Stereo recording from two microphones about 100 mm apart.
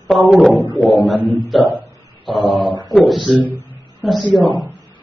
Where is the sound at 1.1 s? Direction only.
20° right (ahead or behind).